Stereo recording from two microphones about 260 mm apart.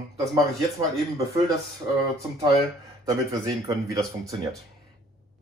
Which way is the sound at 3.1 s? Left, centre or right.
Centre.